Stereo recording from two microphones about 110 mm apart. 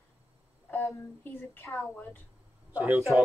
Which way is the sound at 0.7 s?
20° left (ahead or behind).